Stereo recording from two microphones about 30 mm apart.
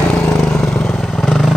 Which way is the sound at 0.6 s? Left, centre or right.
Centre.